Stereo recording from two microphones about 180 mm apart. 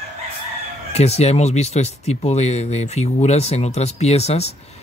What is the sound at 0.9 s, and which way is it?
Speech, 35° left (ahead or behind).